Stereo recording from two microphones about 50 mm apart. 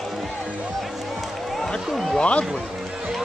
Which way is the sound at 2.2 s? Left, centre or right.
Left.